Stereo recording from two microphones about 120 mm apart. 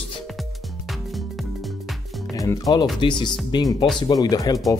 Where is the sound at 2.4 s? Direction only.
30° left (ahead or behind).